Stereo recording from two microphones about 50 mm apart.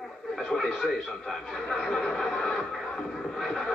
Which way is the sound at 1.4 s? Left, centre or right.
Centre.